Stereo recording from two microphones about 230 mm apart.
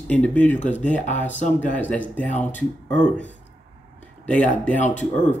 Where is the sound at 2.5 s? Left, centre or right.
Left.